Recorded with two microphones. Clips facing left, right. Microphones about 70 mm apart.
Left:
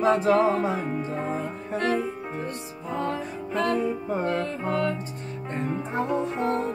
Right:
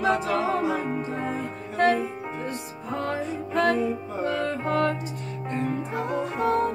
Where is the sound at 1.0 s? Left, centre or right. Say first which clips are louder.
Even; right.